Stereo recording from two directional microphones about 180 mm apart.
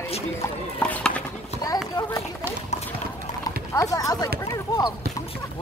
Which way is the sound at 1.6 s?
20° left (ahead or behind).